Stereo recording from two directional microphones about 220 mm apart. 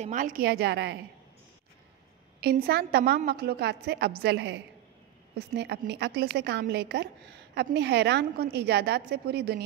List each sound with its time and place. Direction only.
0.0 s a woman's voice: 35° right (ahead or behind)
2.6 s a woman's voice: 45° right (ahead or behind)